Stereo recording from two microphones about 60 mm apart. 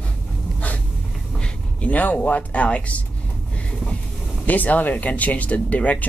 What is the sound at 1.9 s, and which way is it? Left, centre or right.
Speech, left.